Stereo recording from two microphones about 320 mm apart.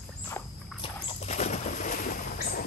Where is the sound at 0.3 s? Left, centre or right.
Centre.